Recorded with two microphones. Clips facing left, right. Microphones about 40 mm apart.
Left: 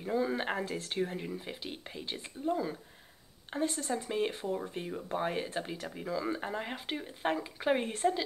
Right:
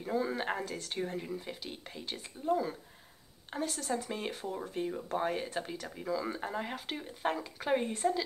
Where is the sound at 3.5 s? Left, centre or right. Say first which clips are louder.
Left 2 dB; centre.